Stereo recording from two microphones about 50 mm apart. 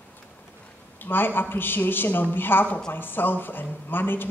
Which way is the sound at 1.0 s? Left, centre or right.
Left.